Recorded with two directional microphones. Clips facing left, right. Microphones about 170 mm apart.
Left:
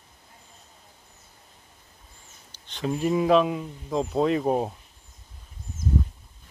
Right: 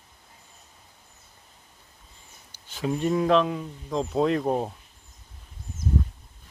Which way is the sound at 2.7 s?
Centre (ahead or behind).